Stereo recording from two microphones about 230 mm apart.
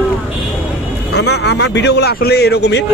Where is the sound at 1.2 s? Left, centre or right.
Left.